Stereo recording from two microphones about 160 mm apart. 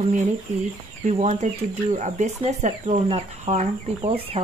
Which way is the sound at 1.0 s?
45° right (ahead or behind).